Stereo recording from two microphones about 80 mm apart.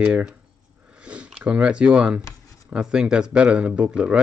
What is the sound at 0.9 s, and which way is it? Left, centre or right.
Sniff, centre.